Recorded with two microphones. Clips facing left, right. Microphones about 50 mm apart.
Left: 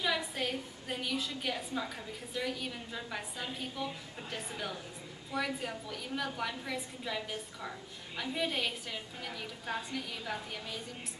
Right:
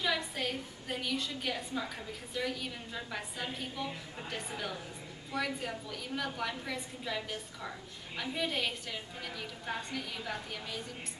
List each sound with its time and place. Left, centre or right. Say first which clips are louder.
0.0 s a woman's voice: even; centre